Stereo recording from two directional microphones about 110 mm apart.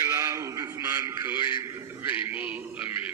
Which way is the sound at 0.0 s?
30° right (ahead or behind).